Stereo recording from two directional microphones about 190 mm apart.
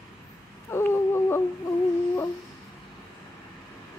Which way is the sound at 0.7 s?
15° left (ahead or behind).